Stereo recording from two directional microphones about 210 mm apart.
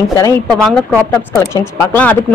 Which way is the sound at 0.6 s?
5° left (ahead or behind).